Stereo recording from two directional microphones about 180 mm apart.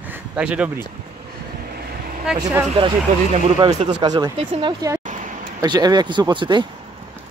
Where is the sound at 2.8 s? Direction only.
30° right (ahead or behind).